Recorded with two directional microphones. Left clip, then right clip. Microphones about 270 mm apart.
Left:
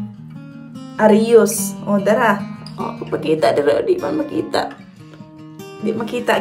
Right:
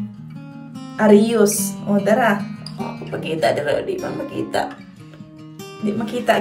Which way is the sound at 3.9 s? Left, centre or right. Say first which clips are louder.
Left 5 dB; centre.